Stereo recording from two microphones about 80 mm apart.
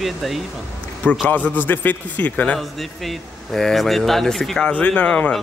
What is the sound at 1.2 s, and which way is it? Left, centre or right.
A man's voice, left.